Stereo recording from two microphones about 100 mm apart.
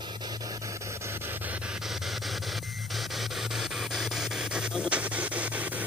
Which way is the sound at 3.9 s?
5° right (ahead or behind).